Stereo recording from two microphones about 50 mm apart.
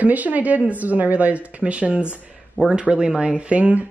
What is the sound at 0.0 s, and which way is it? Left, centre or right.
Speech, right.